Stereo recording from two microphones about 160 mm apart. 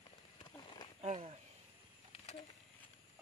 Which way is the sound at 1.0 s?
40° right (ahead or behind).